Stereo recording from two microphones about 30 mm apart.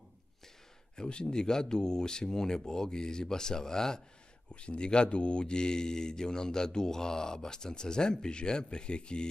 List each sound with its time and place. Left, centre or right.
0.9 s speech: left
4.5 s speech: left